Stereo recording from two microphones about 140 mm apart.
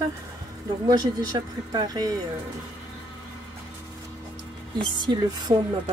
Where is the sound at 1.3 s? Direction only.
30° right (ahead or behind).